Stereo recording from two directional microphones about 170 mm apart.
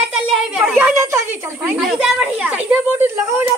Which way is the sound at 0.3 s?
5° right (ahead or behind).